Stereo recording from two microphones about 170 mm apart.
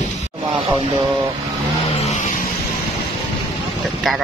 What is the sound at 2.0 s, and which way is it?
Vehicle, 40° left (ahead or behind).